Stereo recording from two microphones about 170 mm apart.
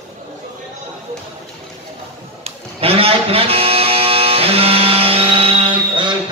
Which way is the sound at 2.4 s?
35° right (ahead or behind).